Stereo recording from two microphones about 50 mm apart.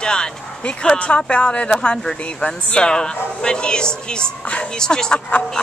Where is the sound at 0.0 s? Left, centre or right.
Centre.